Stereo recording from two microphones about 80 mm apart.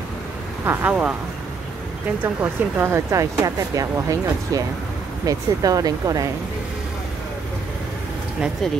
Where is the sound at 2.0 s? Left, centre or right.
Centre.